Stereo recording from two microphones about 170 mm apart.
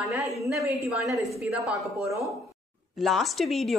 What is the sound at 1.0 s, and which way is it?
Speech, centre (ahead or behind).